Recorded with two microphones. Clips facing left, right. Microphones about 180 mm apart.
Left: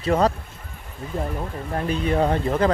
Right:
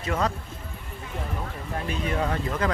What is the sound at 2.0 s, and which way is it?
Speech, 35° left (ahead or behind).